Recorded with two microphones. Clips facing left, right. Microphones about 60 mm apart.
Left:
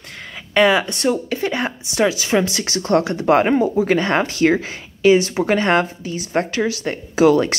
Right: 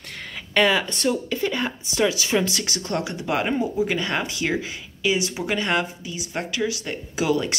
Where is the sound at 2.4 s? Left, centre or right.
Left.